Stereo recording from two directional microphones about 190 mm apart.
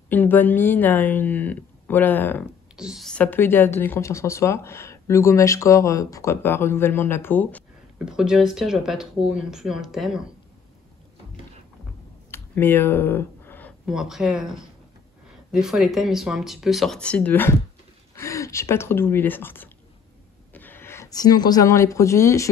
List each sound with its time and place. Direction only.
0.1 s speech: 10° left (ahead or behind)
2.7 s speech: 5° right (ahead or behind)
8.0 s speech: 5° right (ahead or behind)
12.3 s a sound: 10° left (ahead or behind)
13.8 s speech: centre (ahead or behind); by 22.5 s 15° left (ahead or behind)